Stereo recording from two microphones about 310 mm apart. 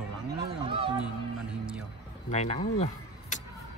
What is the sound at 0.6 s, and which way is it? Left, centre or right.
Speech, centre.